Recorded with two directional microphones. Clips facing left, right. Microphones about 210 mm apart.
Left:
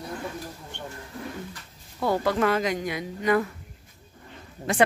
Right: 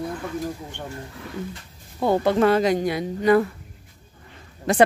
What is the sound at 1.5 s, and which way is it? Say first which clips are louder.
Speech: right 5 dB; 20° right (ahead or behind).